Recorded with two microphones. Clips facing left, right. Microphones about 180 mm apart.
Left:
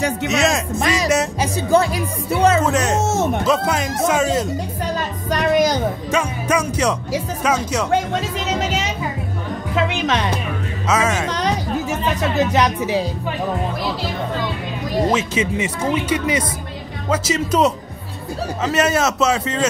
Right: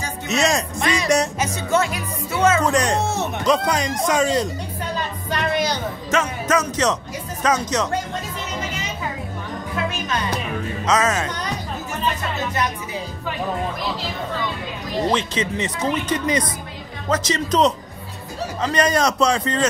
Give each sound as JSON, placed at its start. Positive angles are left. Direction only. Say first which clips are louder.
{"t": 0.3, "sound": "a man's voice", "louder": "right 1 dB", "side_deg": 0}
{"t": 0.9, "sound": "music", "louder": "even", "side_deg": 5}
{"t": 1.4, "sound": "speech", "louder": "left 4 dB", "side_deg": 35}
{"t": 2.6, "sound": "a man's voice", "louder": "left 1 dB", "side_deg": 5}
{"t": 3.0, "sound": "speech", "louder": "left 5 dB", "side_deg": 45}
{"t": 3.4, "sound": "a man's voice", "louder": "left 1 dB", "side_deg": 5}
{"t": 5.3, "sound": "music", "louder": "left 6 dB", "side_deg": 45}
{"t": 6.1, "sound": "speech", "louder": "right 1 dB", "side_deg": 10}
{"t": 7.9, "sound": "music", "louder": "left 6 dB", "side_deg": 90}
{"t": 9.8, "sound": "music", "louder": "left 6 dB", "side_deg": 90}
{"t": 10.9, "sound": "speech", "louder": "left 1 dB", "side_deg": 10}
{"t": 11.2, "sound": "music", "louder": "left 7 dB", "side_deg": 90}
{"t": 12.2, "sound": "speech", "louder": "left 7 dB", "side_deg": 90}
{"t": 15.0, "sound": "a man's voice", "louder": "even", "side_deg": 10}